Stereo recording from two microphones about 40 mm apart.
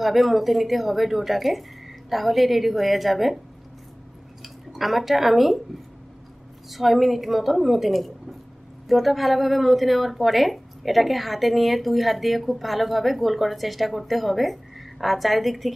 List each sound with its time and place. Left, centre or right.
0.0 s speech: centre
4.4 s speech: centre
6.7 s speech: centre